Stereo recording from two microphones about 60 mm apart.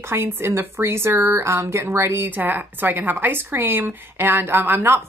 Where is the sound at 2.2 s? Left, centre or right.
Right.